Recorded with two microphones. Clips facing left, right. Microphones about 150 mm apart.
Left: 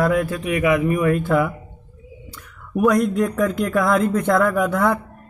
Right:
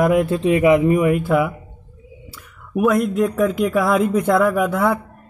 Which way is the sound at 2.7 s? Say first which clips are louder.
Even; centre (ahead or behind).